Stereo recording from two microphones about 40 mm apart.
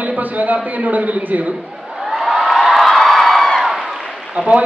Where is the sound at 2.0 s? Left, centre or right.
Centre.